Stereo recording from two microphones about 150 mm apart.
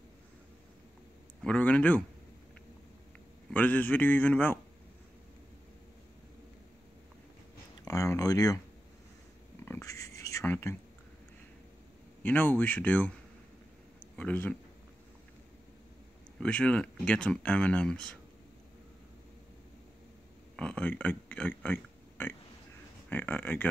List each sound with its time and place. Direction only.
1.4 s speech: 10° left (ahead or behind)
3.5 s speech: 10° left (ahead or behind)
7.8 s speech: 20° left (ahead or behind)
9.7 s speech: 20° left (ahead or behind)
12.2 s speech: 10° left (ahead or behind)
14.1 s speech: 10° left (ahead or behind)
16.3 s speech: 5° left (ahead or behind)
20.5 s speech: 5° left (ahead or behind)